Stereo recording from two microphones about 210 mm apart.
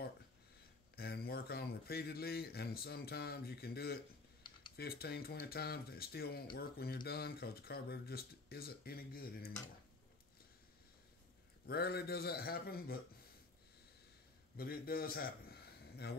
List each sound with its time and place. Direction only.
0.9 s speech: 45° left (ahead or behind)
11.6 s speech: 50° left (ahead or behind)
14.6 s a man's voice: 45° left (ahead or behind)